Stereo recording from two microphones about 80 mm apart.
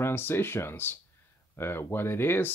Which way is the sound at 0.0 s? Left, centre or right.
Left.